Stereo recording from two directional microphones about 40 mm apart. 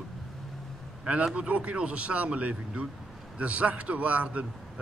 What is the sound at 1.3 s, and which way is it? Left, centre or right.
A man's voice, right.